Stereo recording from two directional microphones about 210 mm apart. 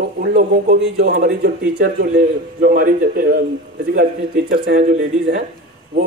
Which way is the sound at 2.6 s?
40° right (ahead or behind).